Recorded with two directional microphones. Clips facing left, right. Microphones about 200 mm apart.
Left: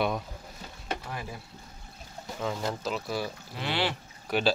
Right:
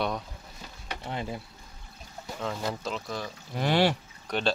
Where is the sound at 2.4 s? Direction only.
5° left (ahead or behind).